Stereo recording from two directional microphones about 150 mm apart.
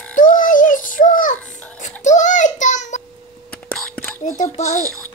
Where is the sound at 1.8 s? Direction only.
55° left (ahead or behind).